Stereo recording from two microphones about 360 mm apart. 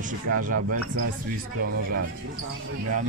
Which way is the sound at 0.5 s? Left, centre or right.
Right.